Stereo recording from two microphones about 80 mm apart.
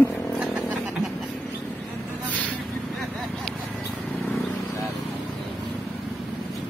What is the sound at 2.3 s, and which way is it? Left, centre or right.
Vehicle, centre.